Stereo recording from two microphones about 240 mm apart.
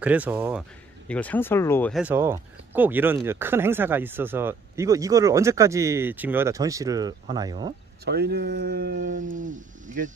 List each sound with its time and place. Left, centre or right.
0.0 s speech: centre
1.0 s speech: centre
8.0 s speech: right